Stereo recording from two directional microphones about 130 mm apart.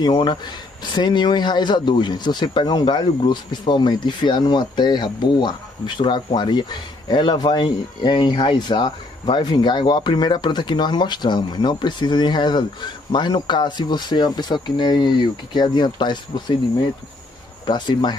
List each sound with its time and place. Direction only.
0.0 s speech: 35° left (ahead or behind)
17.6 s speech: 35° left (ahead or behind)